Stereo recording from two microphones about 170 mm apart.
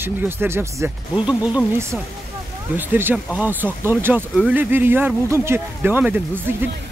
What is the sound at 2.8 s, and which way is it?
Speech, 10° right (ahead or behind).